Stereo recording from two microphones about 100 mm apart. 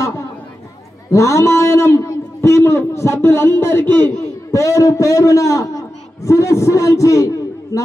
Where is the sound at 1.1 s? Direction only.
30° left (ahead or behind).